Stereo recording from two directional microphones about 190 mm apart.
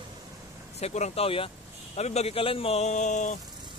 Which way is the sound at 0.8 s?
35° left (ahead or behind).